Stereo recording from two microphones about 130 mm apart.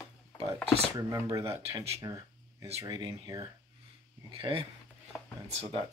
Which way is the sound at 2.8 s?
30° right (ahead or behind).